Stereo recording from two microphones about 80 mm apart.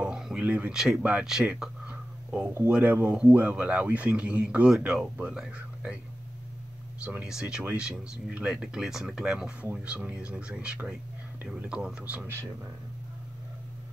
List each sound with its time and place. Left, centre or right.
0.0 s a sound: centre
0.5 s speech: centre
0.7 s speech: centre
1.4 s a sound: centre
2.7 s a man's voice: right
7.0 s a man's voice: centre